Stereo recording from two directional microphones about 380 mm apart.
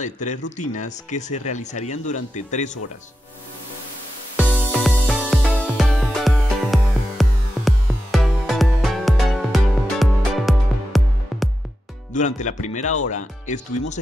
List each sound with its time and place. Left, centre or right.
0.0 s speech: centre
4.4 s music: centre
12.1 s speech: centre